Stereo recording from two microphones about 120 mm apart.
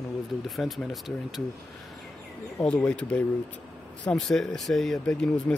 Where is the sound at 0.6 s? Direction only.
Centre (ahead or behind).